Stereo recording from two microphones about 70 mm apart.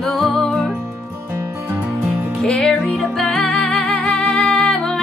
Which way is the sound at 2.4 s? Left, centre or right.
Centre.